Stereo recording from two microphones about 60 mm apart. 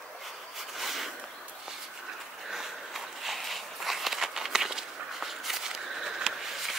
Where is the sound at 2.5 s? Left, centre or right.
Centre.